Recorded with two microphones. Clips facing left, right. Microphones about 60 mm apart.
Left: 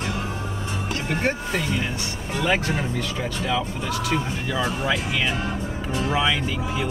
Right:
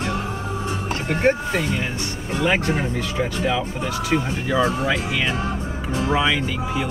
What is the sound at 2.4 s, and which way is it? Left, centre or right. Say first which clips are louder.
Speech: right 2 dB; centre.